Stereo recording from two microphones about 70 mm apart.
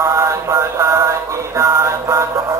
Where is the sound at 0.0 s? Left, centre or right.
Right.